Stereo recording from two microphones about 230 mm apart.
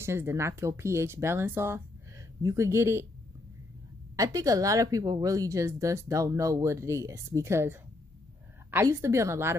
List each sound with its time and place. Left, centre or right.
0.0 s speech: centre
4.2 s speech: centre